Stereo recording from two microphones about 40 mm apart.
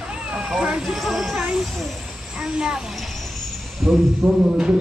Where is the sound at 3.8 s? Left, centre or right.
Centre.